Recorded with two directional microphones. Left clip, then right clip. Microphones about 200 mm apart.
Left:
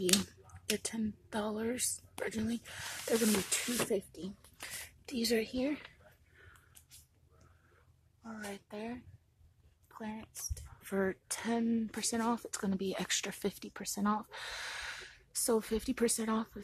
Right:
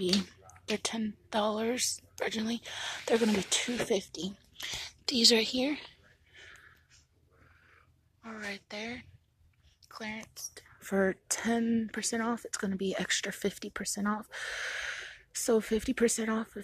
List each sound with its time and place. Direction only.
0.3 s a woman's voice: 5° right (ahead or behind)
6.3 s a sound: 15° right (ahead or behind)
8.2 s speech: 20° right (ahead or behind)
10.0 s speech: 20° right (ahead or behind)
11.6 s speech: centre (ahead or behind)